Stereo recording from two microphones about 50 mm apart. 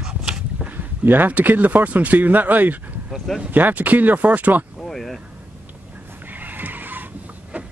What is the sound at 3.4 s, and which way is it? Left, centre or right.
Speech, right.